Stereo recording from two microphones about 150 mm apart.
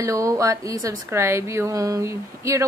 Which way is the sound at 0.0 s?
20° right (ahead or behind).